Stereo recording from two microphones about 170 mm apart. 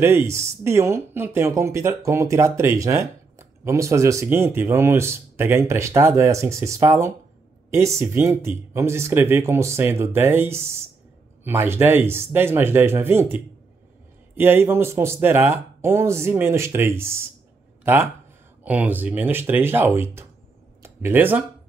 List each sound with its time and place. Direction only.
0.0 s speech: 15° right (ahead or behind)